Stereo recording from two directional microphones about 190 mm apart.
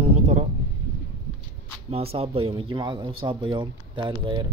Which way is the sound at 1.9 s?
30° right (ahead or behind).